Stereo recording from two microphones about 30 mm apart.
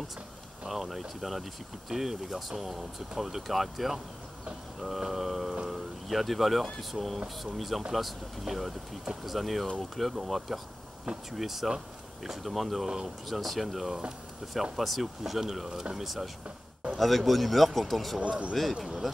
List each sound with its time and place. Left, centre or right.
0.7 s speech: centre
12.8 s speech: centre
13.3 s speech: centre
18.2 s speech: right